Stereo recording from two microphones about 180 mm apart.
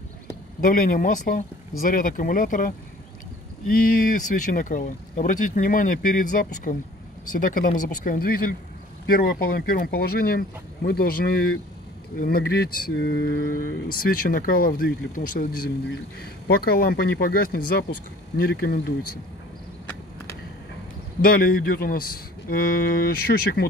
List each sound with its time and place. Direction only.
0.6 s speech: 50° left (ahead or behind)
4.5 s speech: 45° left (ahead or behind)
21.2 s speech: 55° left (ahead or behind)